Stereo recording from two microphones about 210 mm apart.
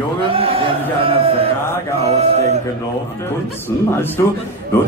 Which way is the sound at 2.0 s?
30° right (ahead or behind).